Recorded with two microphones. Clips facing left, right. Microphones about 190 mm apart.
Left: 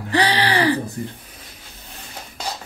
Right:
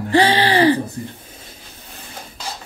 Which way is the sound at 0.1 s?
25° right (ahead or behind).